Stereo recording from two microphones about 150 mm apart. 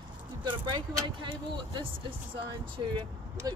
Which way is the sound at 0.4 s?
30° right (ahead or behind).